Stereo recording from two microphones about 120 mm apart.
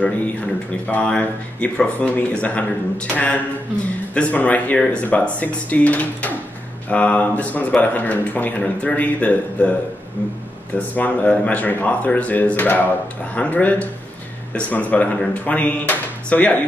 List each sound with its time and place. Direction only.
0.0 s speech: 10° left (ahead or behind)
11.0 s speech: 10° left (ahead or behind)